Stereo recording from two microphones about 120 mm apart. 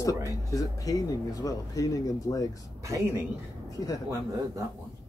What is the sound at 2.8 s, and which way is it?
Speech, 25° right (ahead or behind).